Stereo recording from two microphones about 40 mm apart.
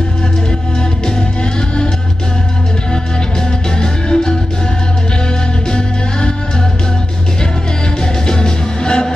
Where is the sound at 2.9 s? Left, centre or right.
Centre.